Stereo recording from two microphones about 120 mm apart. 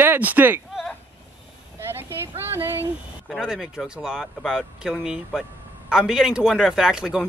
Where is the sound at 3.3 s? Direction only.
Centre (ahead or behind).